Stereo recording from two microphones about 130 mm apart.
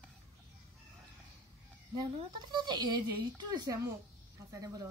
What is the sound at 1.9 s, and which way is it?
Speech, 35° right (ahead or behind).